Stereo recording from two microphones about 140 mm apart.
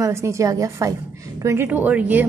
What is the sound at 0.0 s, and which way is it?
A woman's voice, 20° right (ahead or behind).